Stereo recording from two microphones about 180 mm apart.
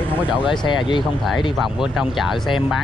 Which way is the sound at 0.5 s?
25° left (ahead or behind).